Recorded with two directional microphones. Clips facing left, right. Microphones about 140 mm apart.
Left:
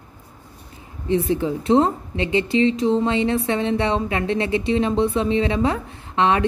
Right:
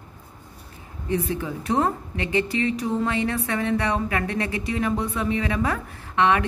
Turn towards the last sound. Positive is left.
turn(degrees=30)  # may be behind; listen again after turning